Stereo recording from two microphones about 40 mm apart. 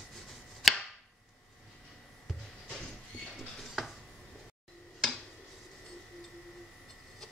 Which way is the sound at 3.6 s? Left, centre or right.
Centre.